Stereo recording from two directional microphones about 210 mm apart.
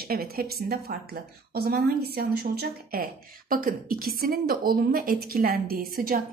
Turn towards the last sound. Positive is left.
turn(degrees=-45)  # may be behind; listen again after turning